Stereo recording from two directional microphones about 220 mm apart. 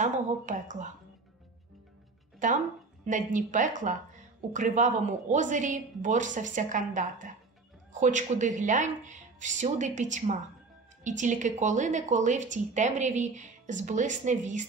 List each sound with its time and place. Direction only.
0.0 s speech: 35° right (ahead or behind)
2.4 s speech: 35° right (ahead or behind)